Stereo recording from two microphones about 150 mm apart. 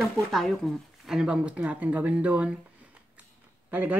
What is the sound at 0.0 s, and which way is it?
Cutlery, centre (ahead or behind).